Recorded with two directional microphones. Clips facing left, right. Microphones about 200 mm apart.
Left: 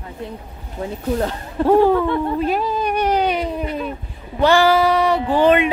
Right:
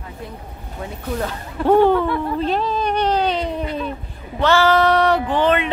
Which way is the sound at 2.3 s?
10° left (ahead or behind).